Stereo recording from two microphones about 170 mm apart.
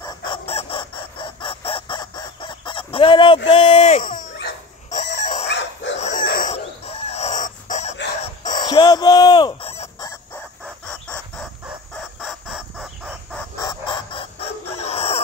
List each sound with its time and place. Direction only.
0.0 s chicken: 30° left (ahead or behind)
3.4 s speech: 35° left (ahead or behind)
4.8 s pig: 45° left (ahead or behind)
5.5 s dog: 90° left
5.9 s dog: 45° left (ahead or behind)
6.2 s chicken: 60° left (ahead or behind)
6.5 s dog: 40° left (ahead or behind)
8.6 s a sound: 20° left (ahead or behind)
10.9 s chicken: 5° left (ahead or behind)
13.4 s a sound: 15° left (ahead or behind)
13.8 s a sound: 30° left (ahead or behind)
14.8 s chicken: 40° left (ahead or behind)